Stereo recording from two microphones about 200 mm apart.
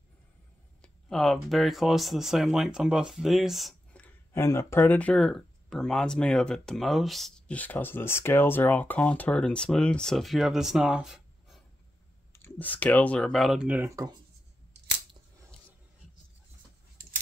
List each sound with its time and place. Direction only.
0.8 s speech: 5° left (ahead or behind)
12.3 s speech: 10° left (ahead or behind); by 14.1 s 15° right (ahead or behind)